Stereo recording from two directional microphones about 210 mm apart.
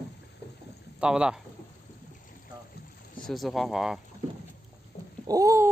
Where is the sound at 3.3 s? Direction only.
Centre (ahead or behind).